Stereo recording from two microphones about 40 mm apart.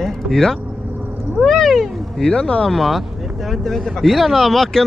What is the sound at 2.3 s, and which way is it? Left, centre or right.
Speech, centre.